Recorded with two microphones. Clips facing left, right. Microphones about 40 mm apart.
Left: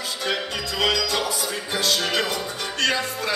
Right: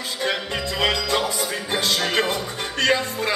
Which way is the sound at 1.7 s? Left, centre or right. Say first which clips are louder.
Right 1 dB; right.